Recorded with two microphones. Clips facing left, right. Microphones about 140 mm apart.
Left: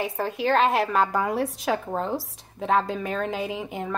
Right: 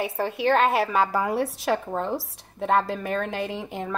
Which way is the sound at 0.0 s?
Centre (ahead or behind).